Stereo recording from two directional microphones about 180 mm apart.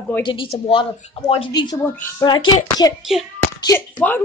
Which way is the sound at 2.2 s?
25° left (ahead or behind).